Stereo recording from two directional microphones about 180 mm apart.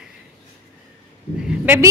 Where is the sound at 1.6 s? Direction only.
10° right (ahead or behind).